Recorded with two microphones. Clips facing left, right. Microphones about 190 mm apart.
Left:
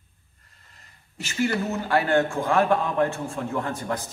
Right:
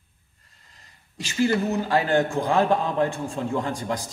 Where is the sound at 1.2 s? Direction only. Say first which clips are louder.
Right 3 dB; 15° right (ahead or behind).